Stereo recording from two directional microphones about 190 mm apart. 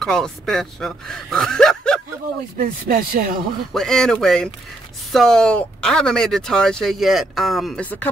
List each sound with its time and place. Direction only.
0.0 s speech: 5° left (ahead or behind)
2.5 s speech: 50° right (ahead or behind)
3.7 s speech: centre (ahead or behind)